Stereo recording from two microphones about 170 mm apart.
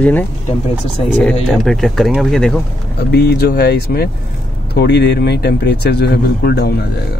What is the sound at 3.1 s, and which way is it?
Speech, 70° left (ahead or behind).